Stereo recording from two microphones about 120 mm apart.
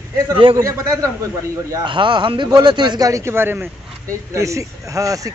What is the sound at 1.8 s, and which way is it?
A man's voice, 40° right (ahead or behind).